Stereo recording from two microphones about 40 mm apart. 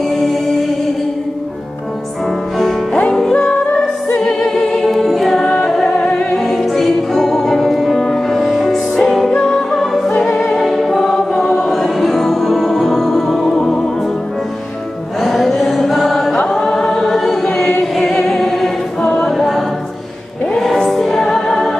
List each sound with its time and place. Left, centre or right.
3.1 s music: centre
6.4 s music: centre
9.3 s music: left
9.7 s music: centre
10.6 s choir: centre
11.7 s music: centre
15.1 s music: centre
16.4 s choir: centre
17.5 s singing: centre
17.9 s choir: centre
20.8 s music: centre